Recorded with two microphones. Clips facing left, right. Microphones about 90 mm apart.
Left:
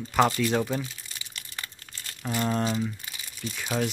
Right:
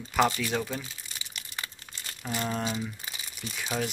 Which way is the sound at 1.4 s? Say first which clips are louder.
Right 1 dB; 15° right (ahead or behind).